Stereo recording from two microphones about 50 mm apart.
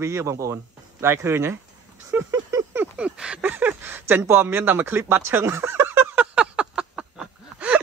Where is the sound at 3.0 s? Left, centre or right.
Centre.